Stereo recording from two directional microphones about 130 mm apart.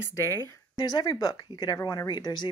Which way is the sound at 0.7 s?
35° left (ahead or behind).